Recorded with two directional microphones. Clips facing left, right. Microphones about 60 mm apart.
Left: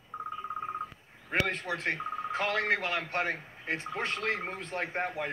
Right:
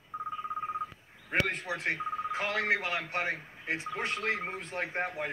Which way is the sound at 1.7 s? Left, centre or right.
Centre.